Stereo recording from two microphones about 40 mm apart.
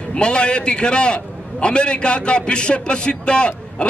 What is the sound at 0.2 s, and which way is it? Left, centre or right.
A man's voice, left.